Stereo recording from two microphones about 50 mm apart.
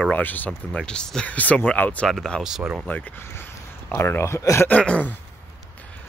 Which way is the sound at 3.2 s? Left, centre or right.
Left.